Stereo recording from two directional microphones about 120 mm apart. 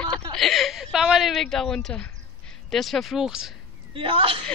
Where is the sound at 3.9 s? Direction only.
50° right (ahead or behind).